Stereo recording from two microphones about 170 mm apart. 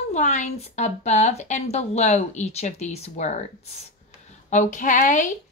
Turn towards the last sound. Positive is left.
turn(degrees=50)  # may be behind; listen again after turning